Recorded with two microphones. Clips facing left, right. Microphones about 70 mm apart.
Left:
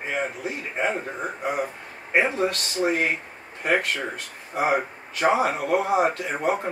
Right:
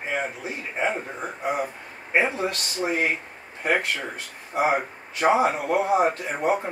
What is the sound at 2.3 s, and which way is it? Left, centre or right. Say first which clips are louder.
Speech: left 3 dB; centre.